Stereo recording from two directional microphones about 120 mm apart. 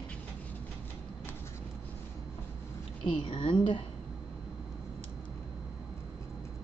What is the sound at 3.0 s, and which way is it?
Speech, 45° left (ahead or behind).